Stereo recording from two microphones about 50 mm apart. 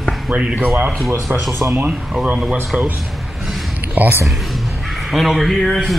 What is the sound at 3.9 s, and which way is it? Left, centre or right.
Speech, right.